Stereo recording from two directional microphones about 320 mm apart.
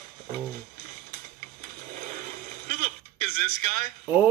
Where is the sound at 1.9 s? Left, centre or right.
Right.